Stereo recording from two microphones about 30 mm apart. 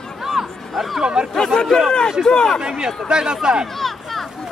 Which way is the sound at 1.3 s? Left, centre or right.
Centre.